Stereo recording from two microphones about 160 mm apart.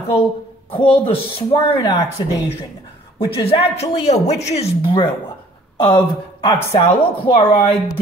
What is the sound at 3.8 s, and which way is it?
A woman's voice, 45° left (ahead or behind).